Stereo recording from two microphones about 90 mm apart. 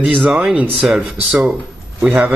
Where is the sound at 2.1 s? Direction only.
20° right (ahead or behind).